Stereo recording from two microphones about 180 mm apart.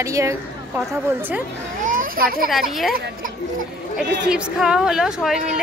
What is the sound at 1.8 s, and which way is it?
Children playing, 50° right (ahead or behind).